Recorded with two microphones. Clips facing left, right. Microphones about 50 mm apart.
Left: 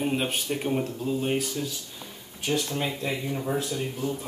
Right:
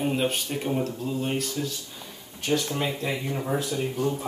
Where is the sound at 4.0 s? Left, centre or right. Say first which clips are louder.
Right 5 dB; right.